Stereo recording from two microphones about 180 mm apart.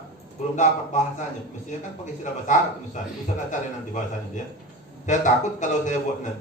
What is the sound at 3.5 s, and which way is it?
A man's voice, 45° left (ahead or behind).